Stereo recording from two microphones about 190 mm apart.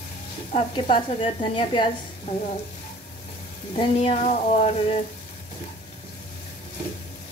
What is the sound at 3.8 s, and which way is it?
Frying, 30° left (ahead or behind).